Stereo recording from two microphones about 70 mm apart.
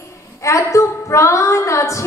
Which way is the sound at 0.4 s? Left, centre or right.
Left.